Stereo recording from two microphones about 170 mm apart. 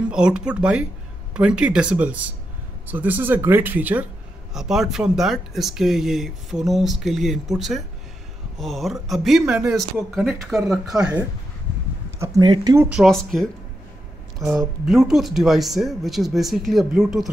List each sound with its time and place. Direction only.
0.1 s speech: 5° right (ahead or behind)
12.2 s speech: 25° right (ahead or behind)
12.9 s speech: centre (ahead or behind)
14.9 s speech: centre (ahead or behind)